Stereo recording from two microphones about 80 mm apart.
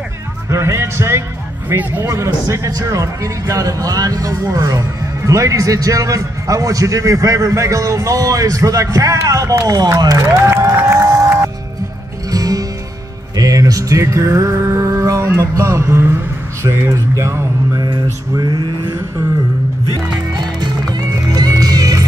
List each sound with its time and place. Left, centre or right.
0.5 s music: right
1.8 s a man's voice: right
2.0 s a man's voice: right
12.3 s music: right
16.6 s speech: right
18.4 s a sound: right
20.3 s music: right